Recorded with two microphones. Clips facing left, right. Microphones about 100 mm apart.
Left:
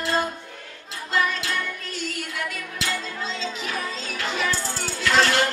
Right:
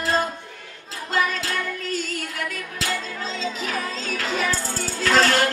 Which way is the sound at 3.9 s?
40° right (ahead or behind).